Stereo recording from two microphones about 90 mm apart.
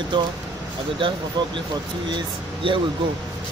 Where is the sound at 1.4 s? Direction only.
55° right (ahead or behind).